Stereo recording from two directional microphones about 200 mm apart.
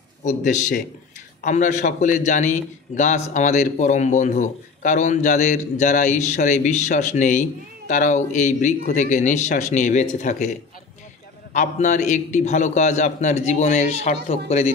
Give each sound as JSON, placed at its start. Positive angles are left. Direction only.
{"t": 0.2, "sound": "a man's voice", "side_deg": 40}
{"t": 11.5, "sound": "a man's voice", "side_deg": 40}